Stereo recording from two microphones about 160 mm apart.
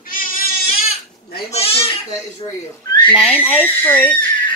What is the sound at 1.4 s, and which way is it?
Speech, 40° left (ahead or behind).